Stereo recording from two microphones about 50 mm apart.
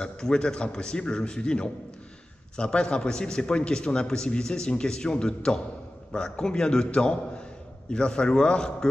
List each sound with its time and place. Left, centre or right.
0.0 s a man's voice: centre